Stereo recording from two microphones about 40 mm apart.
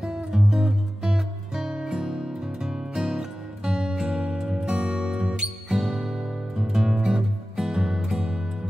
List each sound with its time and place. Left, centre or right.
0.3 s music: centre